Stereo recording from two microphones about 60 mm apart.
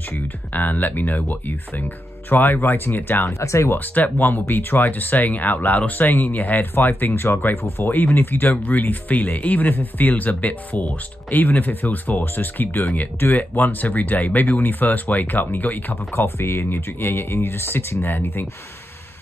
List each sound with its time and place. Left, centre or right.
0.5 s speech: left
3.3 s speech: left
3.7 s speech: left
16.2 s speech: left